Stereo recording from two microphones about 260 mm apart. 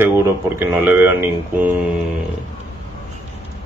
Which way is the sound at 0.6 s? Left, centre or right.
Centre.